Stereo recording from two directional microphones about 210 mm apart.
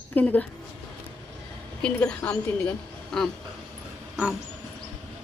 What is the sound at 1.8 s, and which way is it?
A woman's voice, 5° left (ahead or behind).